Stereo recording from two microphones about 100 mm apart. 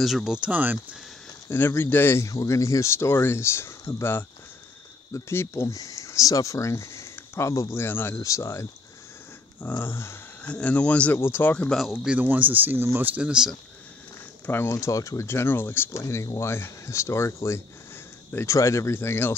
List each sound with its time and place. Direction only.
0.0 s speech: 5° right (ahead or behind)
1.5 s speech: 25° left (ahead or behind)
10.4 s speech: 10° left (ahead or behind)
11.7 s speech: centre (ahead or behind)
14.4 s speech: 20° left (ahead or behind)